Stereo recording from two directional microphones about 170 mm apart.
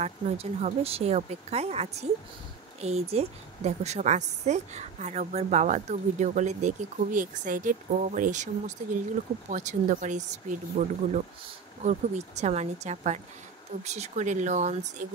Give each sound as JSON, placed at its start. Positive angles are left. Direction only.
{"t": 0.0, "sound": "a woman's voice", "side_deg": -40}